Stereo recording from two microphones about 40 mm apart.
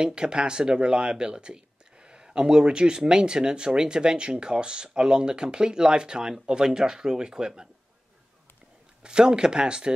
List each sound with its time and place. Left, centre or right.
0.0 s speech: right
9.0 s speech: right